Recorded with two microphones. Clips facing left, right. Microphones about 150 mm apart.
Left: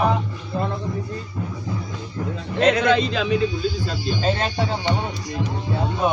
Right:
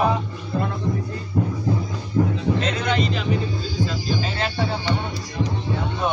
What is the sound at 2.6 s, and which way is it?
Speech, 90° left.